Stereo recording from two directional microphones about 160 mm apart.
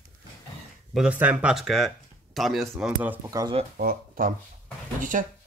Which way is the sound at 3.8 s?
60° right (ahead or behind).